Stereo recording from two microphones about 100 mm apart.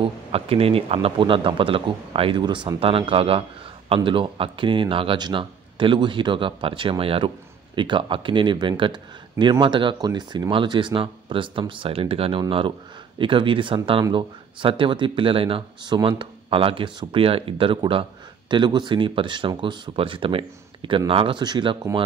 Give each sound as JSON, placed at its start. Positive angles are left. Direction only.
{"t": 0.0, "sound": "speech", "side_deg": -70}
{"t": 2.4, "sound": "speech", "side_deg": -55}
{"t": 2.8, "sound": "speech", "side_deg": -70}
{"t": 3.9, "sound": "speech", "side_deg": -55}
{"t": 12.4, "sound": "speech", "side_deg": -60}
{"t": 15.9, "sound": "speech", "side_deg": -50}
{"t": 18.5, "sound": "speech", "side_deg": -50}
{"t": 21.4, "sound": "speech", "side_deg": -50}